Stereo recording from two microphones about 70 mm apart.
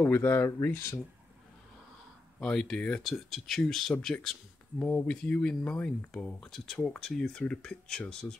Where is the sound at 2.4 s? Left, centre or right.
Centre.